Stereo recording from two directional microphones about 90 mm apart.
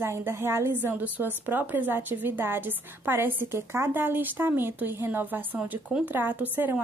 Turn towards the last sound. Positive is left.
turn(degrees=-20)  # may be behind; listen again after turning